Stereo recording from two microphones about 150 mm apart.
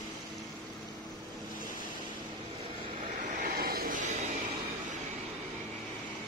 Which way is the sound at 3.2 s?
65° right (ahead or behind).